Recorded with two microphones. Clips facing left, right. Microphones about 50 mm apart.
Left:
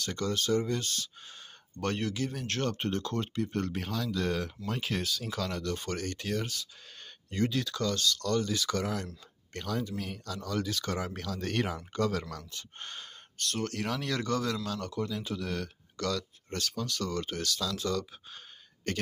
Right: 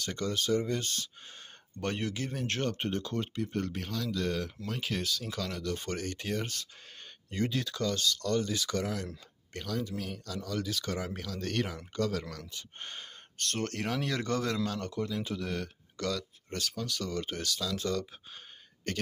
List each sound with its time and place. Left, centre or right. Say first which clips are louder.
0.0 s speech: left 1 dB; right
0.7 s speech: even; right; by 3.7 s centre
3.7 s speech: left 2 dB; centre
5.6 s speech: left 1 dB; centre
6.4 s speech: left 1 dB; right
7.2 s speech: left 2 dB; centre
9.8 s speech: left 1 dB; centre
11.3 s speech: left 2 dB; centre
12.4 s speech: even; centre
13.4 s speech: even; right
13.8 s speech: right 1 dB; centre
14.2 s speech: even; right
15.0 s speech: even; centre